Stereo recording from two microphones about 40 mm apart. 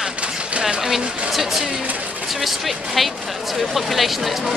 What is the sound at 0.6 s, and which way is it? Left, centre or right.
Speech, right.